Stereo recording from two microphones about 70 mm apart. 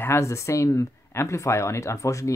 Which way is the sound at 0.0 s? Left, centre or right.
Left.